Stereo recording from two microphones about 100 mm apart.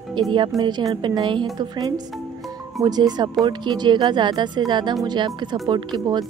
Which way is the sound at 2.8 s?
45° right (ahead or behind).